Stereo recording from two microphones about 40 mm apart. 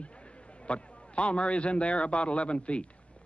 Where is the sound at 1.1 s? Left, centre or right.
Left.